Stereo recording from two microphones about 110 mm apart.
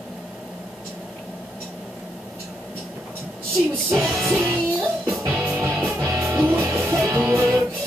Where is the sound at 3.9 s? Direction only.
Centre (ahead or behind).